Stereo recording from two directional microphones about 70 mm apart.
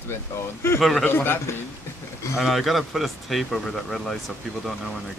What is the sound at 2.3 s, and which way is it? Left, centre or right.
Speech, centre.